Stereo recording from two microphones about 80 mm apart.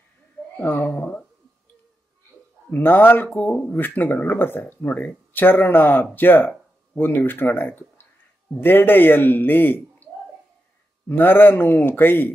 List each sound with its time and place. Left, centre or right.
0.6 s speech: left
2.7 s speech: left
11.1 s speech: left